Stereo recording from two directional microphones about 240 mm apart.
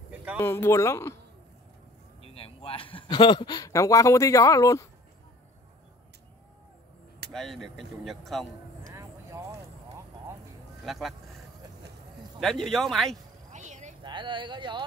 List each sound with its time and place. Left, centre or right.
0.4 s a man's voice: centre
2.3 s a man's voice: left
7.3 s speech: centre
8.8 s vehicle: centre
10.9 s speech: centre
12.4 s speech: centre
13.5 s a sound: right
14.0 s speech: centre